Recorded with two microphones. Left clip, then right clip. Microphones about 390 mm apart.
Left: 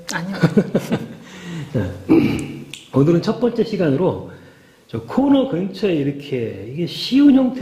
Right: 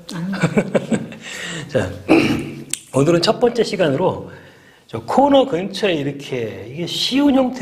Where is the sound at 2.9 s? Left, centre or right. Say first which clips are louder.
Right 2 dB; right.